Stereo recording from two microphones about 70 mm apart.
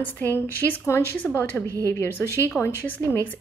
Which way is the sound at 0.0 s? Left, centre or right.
Left.